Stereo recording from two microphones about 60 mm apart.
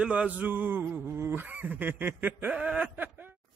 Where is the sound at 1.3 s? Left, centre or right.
Right.